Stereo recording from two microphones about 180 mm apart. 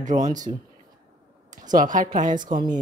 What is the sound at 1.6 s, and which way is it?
Speech, 45° right (ahead or behind).